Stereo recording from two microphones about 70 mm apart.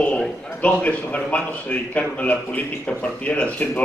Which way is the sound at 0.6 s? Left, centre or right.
Centre.